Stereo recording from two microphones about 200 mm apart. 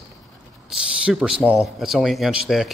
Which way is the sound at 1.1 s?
5° right (ahead or behind).